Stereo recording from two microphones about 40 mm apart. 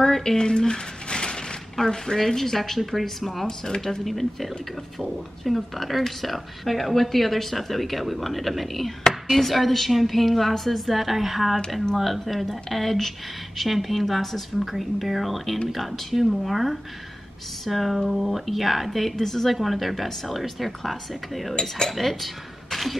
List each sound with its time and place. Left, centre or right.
0.0 s a sound: centre
1.9 s a woman's voice: centre
3.4 s speech: centre
4.0 s a woman's voice: centre
21.5 s speech: centre
21.9 s speech: centre